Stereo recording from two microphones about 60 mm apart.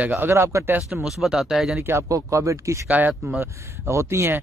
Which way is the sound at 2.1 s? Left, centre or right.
Right.